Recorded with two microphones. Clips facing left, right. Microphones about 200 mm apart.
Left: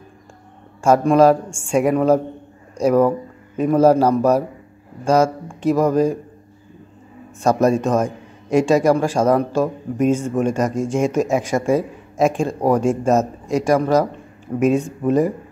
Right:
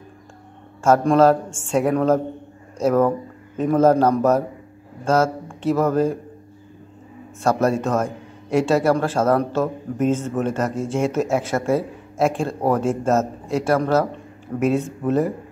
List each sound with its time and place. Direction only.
0.8 s a man's voice: 10° left (ahead or behind)
7.4 s a man's voice: 15° left (ahead or behind)